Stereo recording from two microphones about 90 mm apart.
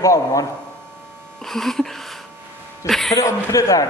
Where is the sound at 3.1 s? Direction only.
40° left (ahead or behind).